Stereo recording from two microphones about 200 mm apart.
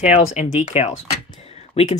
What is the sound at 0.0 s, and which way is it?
Speech, 35° left (ahead or behind).